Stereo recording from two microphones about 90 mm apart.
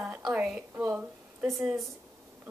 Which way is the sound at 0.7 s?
30° right (ahead or behind).